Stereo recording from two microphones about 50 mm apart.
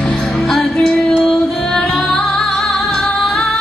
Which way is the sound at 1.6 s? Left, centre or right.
Centre.